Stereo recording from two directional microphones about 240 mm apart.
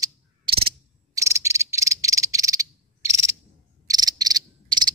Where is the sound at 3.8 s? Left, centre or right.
Centre.